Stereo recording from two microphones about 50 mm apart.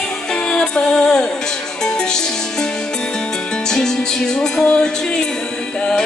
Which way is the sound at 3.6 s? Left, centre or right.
Centre.